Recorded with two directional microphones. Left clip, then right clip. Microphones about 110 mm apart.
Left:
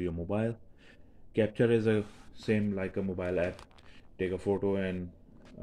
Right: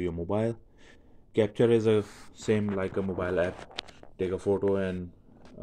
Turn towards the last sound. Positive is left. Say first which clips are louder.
# right 4 dB
turn(degrees=-20)  # may be behind; listen again after turning